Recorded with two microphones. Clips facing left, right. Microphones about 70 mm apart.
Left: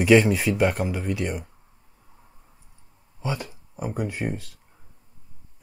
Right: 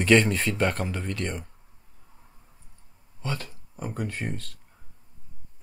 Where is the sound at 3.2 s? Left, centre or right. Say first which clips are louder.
Left 3 dB; centre.